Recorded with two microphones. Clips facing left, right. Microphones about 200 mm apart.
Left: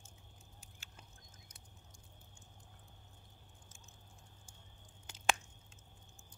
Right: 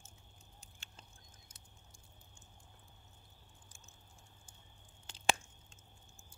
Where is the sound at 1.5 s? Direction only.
25° right (ahead or behind).